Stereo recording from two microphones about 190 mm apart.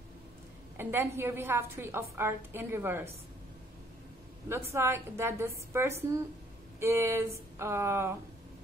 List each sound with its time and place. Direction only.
0.7 s a woman's voice: 10° right (ahead or behind)
4.5 s a woman's voice: 15° right (ahead or behind)